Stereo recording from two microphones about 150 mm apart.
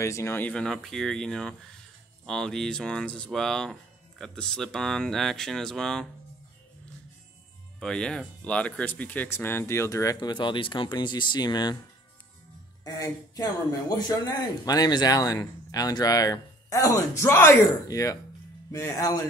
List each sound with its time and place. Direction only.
0.0 s speech: 20° left (ahead or behind)
7.8 s speech: 5° left (ahead or behind); by 11.8 s 25° left (ahead or behind)
12.8 s speech: 25° left (ahead or behind)